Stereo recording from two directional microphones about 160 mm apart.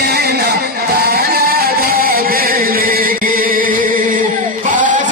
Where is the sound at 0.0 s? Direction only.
80° right.